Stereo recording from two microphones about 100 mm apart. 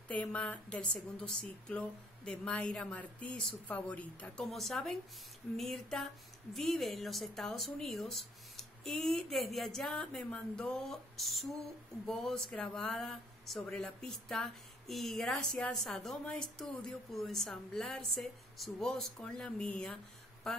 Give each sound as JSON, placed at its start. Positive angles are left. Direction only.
{"t": 0.1, "sound": "a woman's voice", "side_deg": 15}
{"t": 4.5, "sound": "speech", "side_deg": 0}